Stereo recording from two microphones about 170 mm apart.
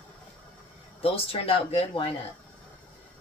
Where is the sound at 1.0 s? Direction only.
35° left (ahead or behind).